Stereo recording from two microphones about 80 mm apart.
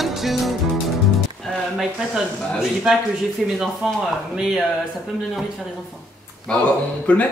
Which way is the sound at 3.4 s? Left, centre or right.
Centre.